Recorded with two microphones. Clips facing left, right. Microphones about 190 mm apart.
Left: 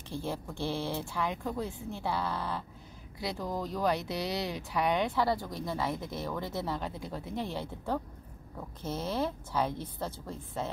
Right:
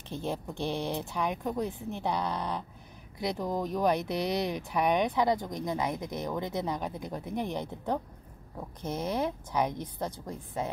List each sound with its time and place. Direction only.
0.1 s speech: 20° right (ahead or behind)